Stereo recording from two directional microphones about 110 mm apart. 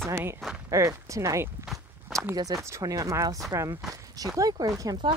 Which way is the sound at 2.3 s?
30° right (ahead or behind).